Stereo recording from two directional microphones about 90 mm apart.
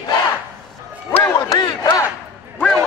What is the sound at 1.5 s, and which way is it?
Speech, 45° left (ahead or behind).